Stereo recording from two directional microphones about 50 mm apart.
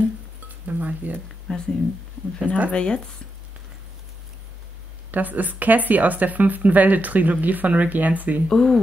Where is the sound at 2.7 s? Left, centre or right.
Centre.